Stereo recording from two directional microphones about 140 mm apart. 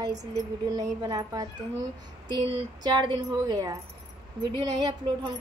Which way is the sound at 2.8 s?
30° right (ahead or behind).